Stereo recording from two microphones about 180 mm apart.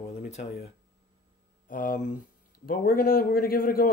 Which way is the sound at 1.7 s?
50° left (ahead or behind).